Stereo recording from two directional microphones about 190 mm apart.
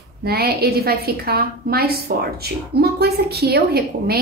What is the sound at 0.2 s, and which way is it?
A woman's voice, 55° right (ahead or behind).